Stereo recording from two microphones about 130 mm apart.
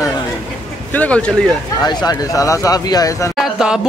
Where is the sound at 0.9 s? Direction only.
10° left (ahead or behind).